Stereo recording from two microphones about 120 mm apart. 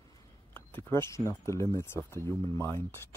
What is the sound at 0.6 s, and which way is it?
Speech, 20° left (ahead or behind).